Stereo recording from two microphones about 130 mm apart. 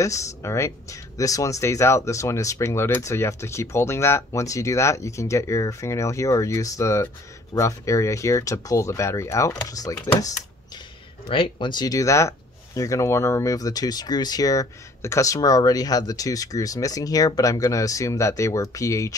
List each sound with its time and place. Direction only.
0.0 s speech: 25° left (ahead or behind)
11.2 s speech: 40° left (ahead or behind); by 19.1 s 25° left (ahead or behind)